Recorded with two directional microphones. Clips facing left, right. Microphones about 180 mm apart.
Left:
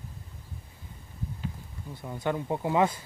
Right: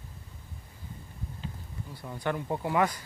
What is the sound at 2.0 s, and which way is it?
Speech, 20° left (ahead or behind).